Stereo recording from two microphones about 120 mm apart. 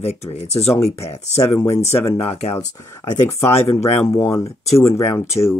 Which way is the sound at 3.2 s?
20° left (ahead or behind).